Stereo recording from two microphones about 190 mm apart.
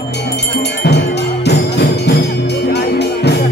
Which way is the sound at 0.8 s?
60° left (ahead or behind).